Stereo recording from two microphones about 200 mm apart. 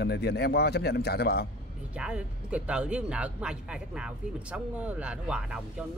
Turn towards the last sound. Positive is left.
turn(degrees=-5)  # may be behind; listen again after turning